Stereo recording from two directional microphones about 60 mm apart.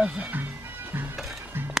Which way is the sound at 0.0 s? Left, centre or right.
Right.